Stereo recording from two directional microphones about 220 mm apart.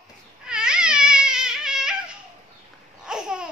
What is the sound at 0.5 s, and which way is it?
Babbling, 5° right (ahead or behind).